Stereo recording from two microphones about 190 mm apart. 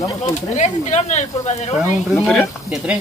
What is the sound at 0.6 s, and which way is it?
Speech, 40° left (ahead or behind).